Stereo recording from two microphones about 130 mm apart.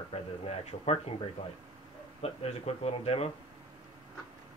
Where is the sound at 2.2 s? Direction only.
50° left (ahead or behind).